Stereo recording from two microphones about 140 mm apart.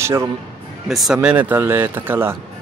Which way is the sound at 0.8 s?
Centre (ahead or behind).